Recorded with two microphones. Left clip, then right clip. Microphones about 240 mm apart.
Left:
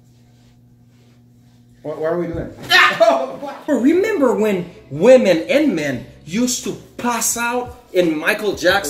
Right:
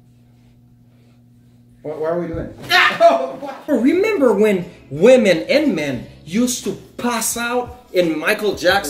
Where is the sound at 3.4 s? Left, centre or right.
Centre.